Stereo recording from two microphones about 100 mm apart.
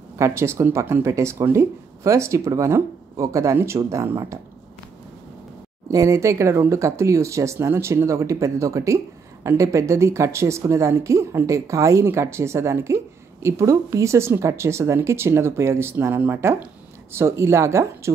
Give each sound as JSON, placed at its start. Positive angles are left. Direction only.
{"t": 0.2, "sound": "speech", "side_deg": -25}
{"t": 5.9, "sound": "speech", "side_deg": -35}